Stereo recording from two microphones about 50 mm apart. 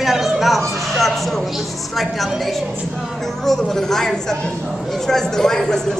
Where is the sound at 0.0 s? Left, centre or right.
Centre.